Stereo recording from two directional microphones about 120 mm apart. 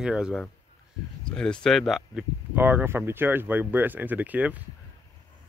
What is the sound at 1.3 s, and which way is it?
Speech, 5° left (ahead or behind).